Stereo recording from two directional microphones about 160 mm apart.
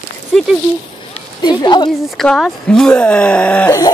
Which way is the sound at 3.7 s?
20° left (ahead or behind).